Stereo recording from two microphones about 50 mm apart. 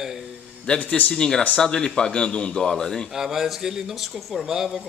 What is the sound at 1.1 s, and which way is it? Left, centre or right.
Speech, centre.